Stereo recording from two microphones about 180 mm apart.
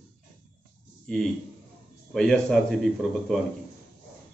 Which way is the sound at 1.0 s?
5° left (ahead or behind).